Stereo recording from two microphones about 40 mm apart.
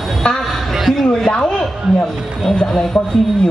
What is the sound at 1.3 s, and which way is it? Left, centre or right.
A woman's voice, left.